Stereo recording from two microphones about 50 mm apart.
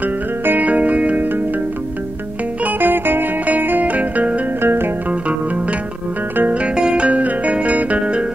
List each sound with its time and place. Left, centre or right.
0.5 s music: right
2.6 s music: right
4.6 s music: right
6.7 s music: centre